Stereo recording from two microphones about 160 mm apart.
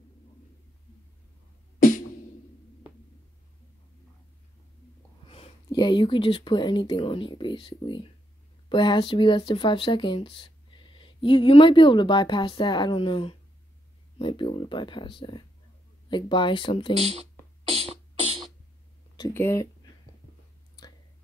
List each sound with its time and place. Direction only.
5.2 s speech: 35° left (ahead or behind)
17.0 s music: 40° right (ahead or behind)
19.3 s speech: 15° left (ahead or behind)